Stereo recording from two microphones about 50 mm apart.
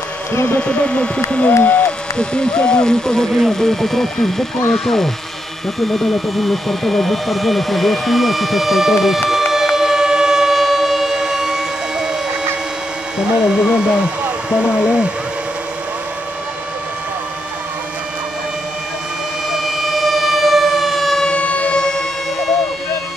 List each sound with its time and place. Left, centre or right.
0.3 s speech: left
0.6 s speech: left
2.1 s speech: centre
5.8 s vehicle: centre
13.2 s speech: centre
19.5 s siren: centre
21.2 s siren: left